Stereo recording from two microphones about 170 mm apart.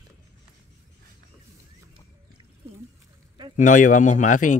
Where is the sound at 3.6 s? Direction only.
50° left (ahead or behind).